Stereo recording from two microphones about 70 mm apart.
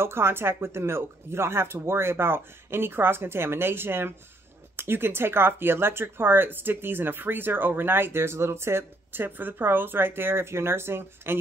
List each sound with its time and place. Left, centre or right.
0.0 s speech: right